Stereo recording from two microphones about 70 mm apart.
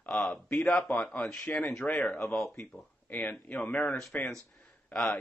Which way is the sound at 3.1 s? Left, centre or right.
Left.